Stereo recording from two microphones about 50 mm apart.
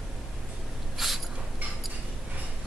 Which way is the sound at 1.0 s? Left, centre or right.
Centre.